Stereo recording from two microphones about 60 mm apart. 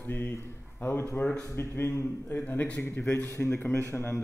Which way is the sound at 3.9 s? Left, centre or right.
Left.